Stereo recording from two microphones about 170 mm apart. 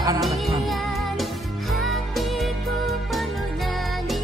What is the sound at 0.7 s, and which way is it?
Music, centre (ahead or behind).